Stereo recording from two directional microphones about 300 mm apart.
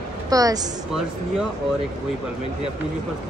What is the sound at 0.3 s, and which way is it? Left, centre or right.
Speech, centre.